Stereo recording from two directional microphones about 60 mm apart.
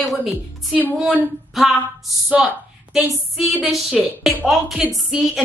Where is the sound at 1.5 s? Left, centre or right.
Centre.